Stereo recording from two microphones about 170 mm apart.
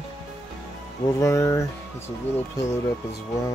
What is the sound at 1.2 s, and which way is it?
Speech, 20° left (ahead or behind).